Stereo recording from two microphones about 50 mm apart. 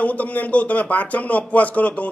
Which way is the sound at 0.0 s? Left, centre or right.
Left.